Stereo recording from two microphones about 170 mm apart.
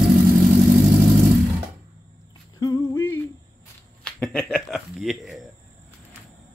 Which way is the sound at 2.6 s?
20° left (ahead or behind).